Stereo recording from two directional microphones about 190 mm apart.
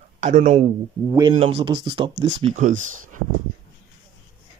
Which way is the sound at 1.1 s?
20° right (ahead or behind).